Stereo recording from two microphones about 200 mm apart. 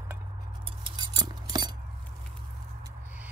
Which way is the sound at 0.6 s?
25° right (ahead or behind).